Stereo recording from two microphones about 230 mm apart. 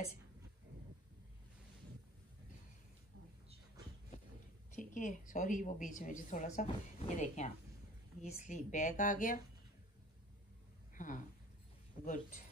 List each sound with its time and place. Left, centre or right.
4.6 s a woman's voice: left
11.0 s a woman's voice: left